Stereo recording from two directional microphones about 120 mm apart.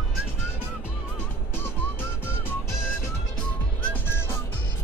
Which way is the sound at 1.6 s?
15° left (ahead or behind).